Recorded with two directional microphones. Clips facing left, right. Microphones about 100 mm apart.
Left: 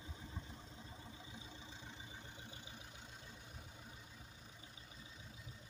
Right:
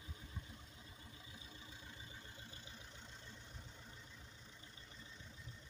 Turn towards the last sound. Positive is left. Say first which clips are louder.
# left 1 dB
turn(degrees=10)  # may be behind; listen again after turning